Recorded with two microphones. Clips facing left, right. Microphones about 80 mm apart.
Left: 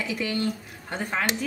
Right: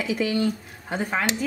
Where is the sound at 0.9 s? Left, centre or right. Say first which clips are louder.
Right 3 dB; centre.